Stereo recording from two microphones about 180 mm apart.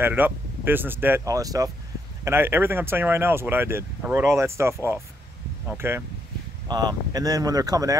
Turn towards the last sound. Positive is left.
turn(degrees=-20)  # may be behind; listen again after turning